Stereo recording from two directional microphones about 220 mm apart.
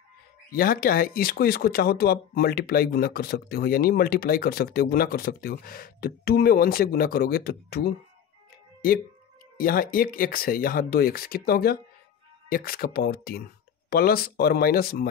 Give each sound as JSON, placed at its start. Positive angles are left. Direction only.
{"t": 0.6, "sound": "speech", "side_deg": 40}
{"t": 9.6, "sound": "speech", "side_deg": 40}